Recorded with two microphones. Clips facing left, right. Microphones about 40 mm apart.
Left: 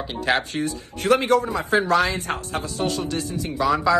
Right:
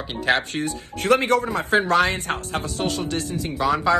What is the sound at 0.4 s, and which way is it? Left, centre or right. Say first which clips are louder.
Speech: even; right.